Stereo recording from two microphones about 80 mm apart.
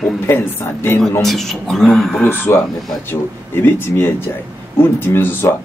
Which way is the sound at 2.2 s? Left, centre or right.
Left.